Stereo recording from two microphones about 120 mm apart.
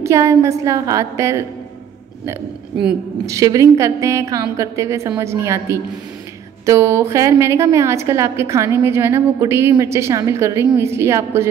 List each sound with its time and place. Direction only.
0.0 s a woman's voice: 25° right (ahead or behind)
3.3 s a woman's voice: 25° right (ahead or behind)